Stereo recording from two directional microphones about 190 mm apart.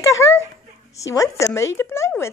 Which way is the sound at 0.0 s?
15° left (ahead or behind).